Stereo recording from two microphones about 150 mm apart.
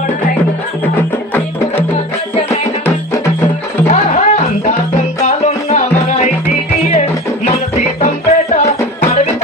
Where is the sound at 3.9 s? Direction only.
50° left (ahead or behind).